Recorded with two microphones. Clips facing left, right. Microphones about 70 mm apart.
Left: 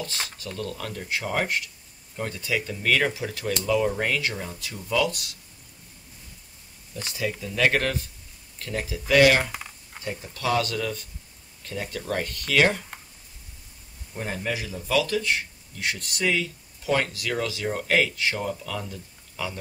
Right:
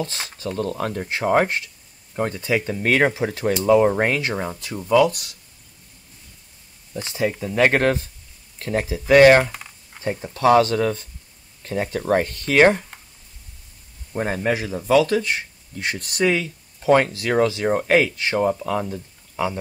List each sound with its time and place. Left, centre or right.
0.0 s a man's voice: right
6.9 s a man's voice: right
14.1 s a man's voice: right